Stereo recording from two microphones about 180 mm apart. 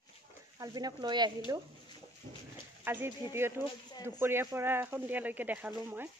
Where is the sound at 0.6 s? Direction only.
20° right (ahead or behind).